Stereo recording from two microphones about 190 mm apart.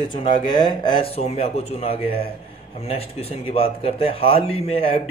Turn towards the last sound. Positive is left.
turn(degrees=30)  # may be behind; listen again after turning